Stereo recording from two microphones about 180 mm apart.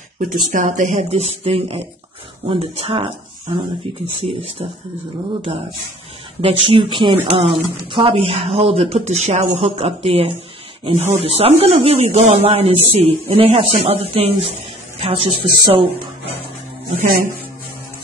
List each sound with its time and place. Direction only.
0.3 s speech: 45° right (ahead or behind)
6.4 s speech: 30° right (ahead or behind)
16.9 s speech: 45° right (ahead or behind)